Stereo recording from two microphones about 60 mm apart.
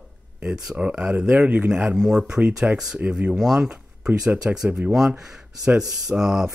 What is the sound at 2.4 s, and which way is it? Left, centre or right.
Speech, right.